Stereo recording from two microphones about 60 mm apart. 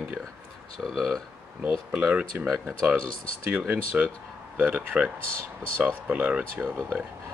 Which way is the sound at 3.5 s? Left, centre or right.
Right.